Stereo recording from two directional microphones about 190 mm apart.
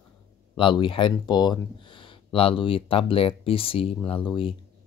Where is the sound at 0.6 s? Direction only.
25° left (ahead or behind).